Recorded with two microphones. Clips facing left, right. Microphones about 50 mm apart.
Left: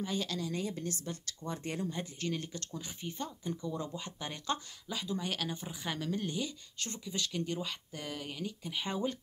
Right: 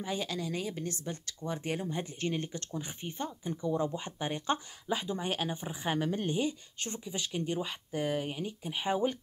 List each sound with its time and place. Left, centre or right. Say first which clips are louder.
0.0 s a woman's voice: right 1 dB; centre
0.7 s speech: right 2 dB; right
3.3 s speech: right 5 dB; centre